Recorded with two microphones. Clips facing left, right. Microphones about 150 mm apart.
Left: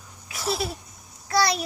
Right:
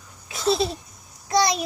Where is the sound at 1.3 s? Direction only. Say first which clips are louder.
Right 2 dB; 20° right (ahead or behind).